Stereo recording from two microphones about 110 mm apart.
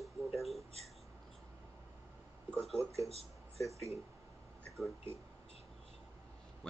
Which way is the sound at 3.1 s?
70° right (ahead or behind).